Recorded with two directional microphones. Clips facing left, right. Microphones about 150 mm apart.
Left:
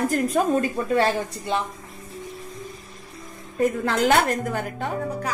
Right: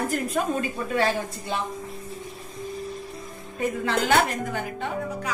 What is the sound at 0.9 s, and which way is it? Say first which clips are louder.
Speech: left 2 dB; 35° left (ahead or behind).